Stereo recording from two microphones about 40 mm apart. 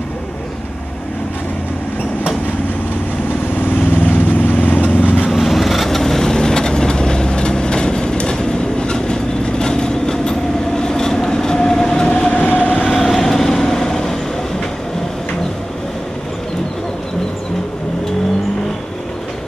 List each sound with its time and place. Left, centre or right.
3.5 s lawn mower: left
4.1 s vehicle: left
5.3 s vehicle: centre
10.8 s train: centre; by 12.4 s left
12.4 s vehicle: left
12.8 s vehicle: centre